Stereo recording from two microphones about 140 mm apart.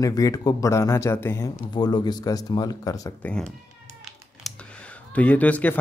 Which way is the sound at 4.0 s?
Centre (ahead or behind).